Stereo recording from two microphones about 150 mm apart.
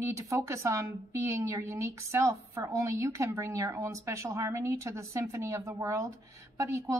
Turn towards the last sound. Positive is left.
turn(degrees=-20)  # may be behind; listen again after turning